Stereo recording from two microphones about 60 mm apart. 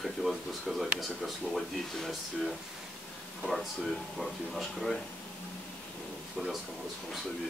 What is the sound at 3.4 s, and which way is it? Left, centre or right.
Speech, centre.